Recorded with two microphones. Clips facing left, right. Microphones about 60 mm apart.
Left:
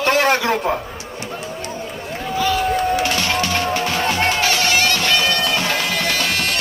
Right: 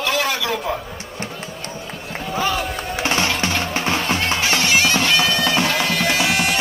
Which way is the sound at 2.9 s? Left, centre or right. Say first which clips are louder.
Left 2 dB; right.